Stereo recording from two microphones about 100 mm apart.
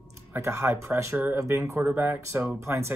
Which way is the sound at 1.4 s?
30° right (ahead or behind).